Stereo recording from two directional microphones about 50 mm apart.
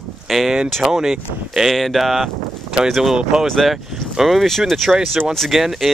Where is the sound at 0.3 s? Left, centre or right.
Centre.